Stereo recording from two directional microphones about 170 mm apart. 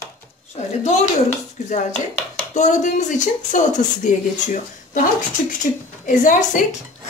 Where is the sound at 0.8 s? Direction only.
45° left (ahead or behind).